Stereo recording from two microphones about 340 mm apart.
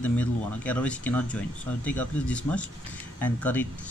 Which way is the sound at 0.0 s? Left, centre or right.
Centre.